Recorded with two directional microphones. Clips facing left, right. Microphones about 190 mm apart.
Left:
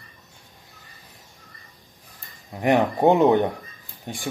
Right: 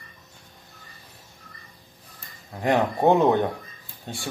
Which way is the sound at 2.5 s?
20° left (ahead or behind).